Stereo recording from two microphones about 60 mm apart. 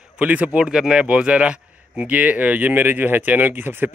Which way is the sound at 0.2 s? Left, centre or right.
Right.